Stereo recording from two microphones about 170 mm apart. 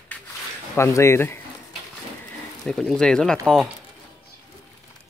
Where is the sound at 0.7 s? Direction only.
15° left (ahead or behind).